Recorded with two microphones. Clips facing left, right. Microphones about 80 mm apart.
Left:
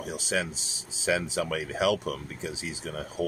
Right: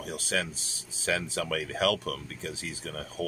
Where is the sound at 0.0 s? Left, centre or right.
Centre.